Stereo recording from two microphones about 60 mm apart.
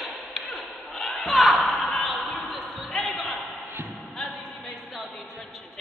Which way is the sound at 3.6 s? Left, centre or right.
Right.